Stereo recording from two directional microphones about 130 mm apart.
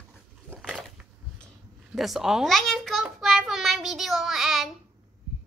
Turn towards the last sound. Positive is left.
turn(degrees=0)  # may be behind; listen again after turning